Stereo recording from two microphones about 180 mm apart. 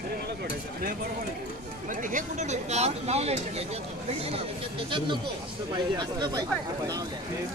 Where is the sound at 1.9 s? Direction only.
45° right (ahead or behind); by 7.0 s 20° right (ahead or behind).